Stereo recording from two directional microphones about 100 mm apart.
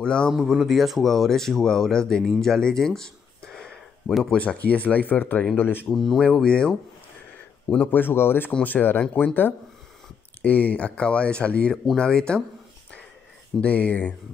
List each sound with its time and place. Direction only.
0.0 s speech: 10° left (ahead or behind)
0.3 s speech: centre (ahead or behind); by 5.9 s 20° left (ahead or behind)
5.9 s speech: centre (ahead or behind)
13.6 s speech: 15° left (ahead or behind)